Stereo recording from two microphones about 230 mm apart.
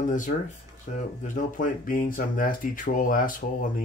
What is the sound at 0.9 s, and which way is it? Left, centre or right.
Speech, left.